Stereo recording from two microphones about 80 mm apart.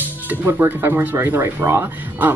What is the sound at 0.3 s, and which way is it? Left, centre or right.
Speech, right.